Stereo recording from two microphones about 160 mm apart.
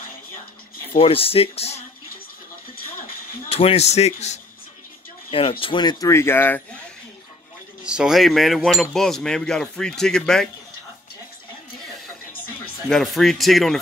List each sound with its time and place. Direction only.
0.9 s speech: 35° left (ahead or behind)
3.4 s a man's voice: 40° left (ahead or behind); by 6.8 s 10° left (ahead or behind)
7.8 s cutlery: 5° right (ahead or behind)
12.9 s cutlery: centre (ahead or behind)